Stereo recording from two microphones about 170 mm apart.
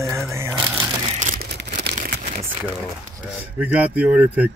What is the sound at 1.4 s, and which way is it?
Crumpling, 75° right (ahead or behind).